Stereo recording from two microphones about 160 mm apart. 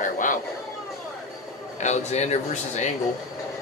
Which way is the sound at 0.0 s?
55° left (ahead or behind).